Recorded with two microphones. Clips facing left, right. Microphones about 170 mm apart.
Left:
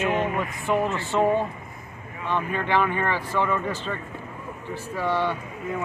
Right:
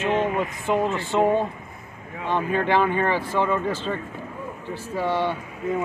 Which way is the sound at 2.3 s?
30° right (ahead or behind).